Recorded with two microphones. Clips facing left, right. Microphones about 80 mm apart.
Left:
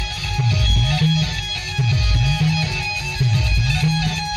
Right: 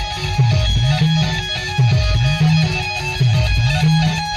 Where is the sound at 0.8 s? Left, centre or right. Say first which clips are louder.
Right 2 dB; right.